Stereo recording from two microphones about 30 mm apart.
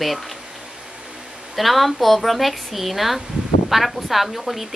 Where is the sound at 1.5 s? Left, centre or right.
Centre.